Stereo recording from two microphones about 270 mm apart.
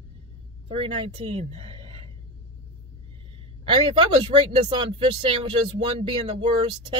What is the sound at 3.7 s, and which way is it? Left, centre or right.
Speech, centre.